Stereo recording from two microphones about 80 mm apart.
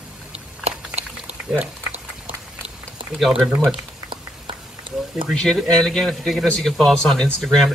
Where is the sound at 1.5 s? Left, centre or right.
Right.